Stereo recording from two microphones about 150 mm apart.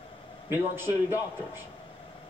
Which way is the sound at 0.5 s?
15° right (ahead or behind).